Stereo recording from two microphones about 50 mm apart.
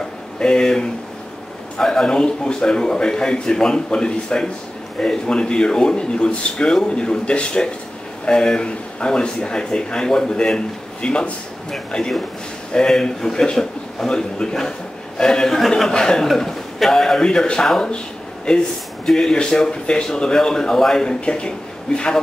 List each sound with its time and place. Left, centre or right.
0.4 s a man's voice: centre